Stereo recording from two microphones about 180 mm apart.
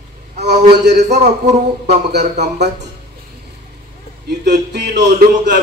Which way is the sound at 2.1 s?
65° right (ahead or behind).